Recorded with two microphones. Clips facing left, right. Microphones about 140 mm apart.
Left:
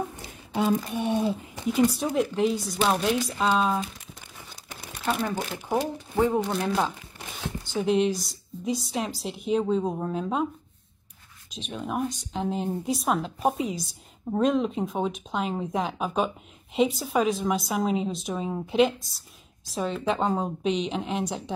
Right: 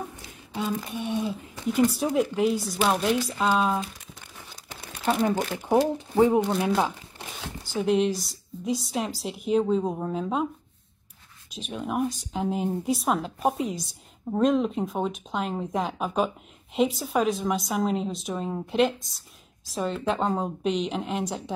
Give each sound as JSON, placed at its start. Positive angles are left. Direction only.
{"t": 0.6, "sound": "a sound", "side_deg": 55}
{"t": 1.7, "sound": "a woman's voice", "side_deg": 0}
{"t": 5.9, "sound": "speech", "side_deg": -15}
{"t": 6.5, "sound": "a woman's voice", "side_deg": -5}
{"t": 11.5, "sound": "a woman's voice", "side_deg": 0}